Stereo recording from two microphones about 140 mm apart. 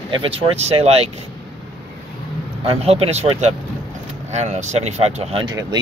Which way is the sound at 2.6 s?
45° right (ahead or behind).